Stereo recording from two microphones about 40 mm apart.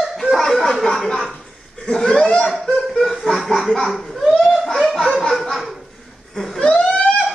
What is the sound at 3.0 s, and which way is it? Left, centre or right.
Laughter, centre.